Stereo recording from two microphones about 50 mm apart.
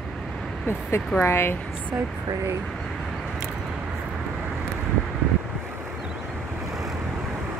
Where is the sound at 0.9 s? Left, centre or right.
Left.